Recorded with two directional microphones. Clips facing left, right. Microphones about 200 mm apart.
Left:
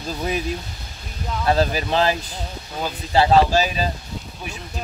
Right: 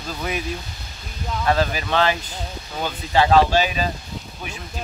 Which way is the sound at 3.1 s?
35° left (ahead or behind).